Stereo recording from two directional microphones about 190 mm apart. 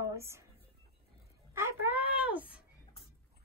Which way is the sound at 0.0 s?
15° right (ahead or behind).